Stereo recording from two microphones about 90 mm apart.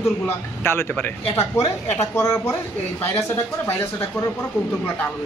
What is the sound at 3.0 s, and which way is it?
Speech, 25° left (ahead or behind).